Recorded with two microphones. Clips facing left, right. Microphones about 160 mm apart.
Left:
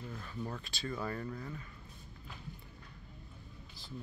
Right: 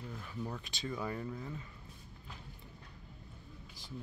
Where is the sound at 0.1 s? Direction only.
10° right (ahead or behind).